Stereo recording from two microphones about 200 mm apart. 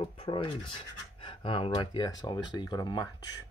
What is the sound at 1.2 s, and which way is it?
Speech, 25° left (ahead or behind).